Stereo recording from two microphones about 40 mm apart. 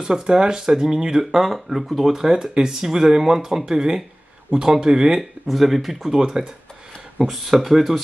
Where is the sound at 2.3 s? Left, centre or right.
Centre.